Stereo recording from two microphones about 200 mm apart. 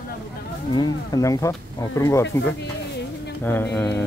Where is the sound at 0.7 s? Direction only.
20° left (ahead or behind).